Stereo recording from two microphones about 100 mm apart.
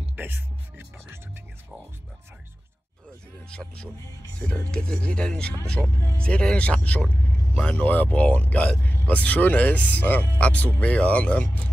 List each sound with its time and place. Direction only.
0.1 s music: 20° right (ahead or behind)
3.4 s speech: 10° left (ahead or behind)